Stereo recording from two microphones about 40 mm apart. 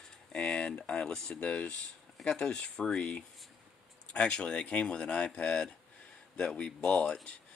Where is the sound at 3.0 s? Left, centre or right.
Left.